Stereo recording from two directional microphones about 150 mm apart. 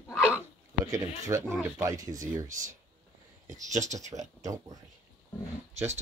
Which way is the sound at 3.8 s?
50° right (ahead or behind).